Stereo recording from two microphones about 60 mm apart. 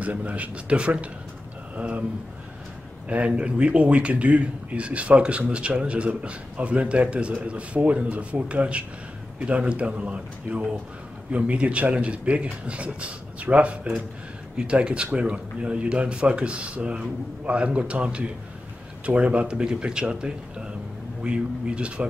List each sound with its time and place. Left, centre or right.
0.0 s speech: right
3.1 s a man's voice: centre